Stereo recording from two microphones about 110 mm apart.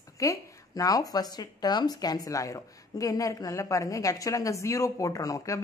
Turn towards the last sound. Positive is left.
turn(degrees=30)  # may be behind; listen again after turning